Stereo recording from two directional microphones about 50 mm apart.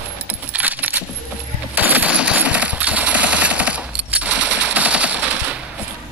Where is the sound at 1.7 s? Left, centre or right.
Right.